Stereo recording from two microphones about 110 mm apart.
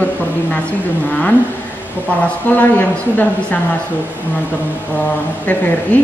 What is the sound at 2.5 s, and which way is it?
A woman's voice, 15° left (ahead or behind).